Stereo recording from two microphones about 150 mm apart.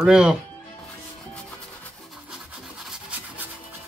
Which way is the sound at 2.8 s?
5° right (ahead or behind).